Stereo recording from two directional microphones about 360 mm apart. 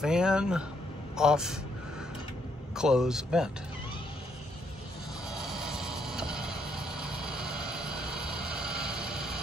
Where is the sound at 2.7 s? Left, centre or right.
Centre.